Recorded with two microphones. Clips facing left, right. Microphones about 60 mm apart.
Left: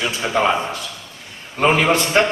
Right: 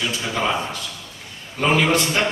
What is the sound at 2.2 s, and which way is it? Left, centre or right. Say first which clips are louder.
Speech: left 5 dB; left.